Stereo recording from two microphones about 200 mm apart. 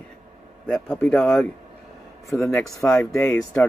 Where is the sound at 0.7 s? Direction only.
5° left (ahead or behind).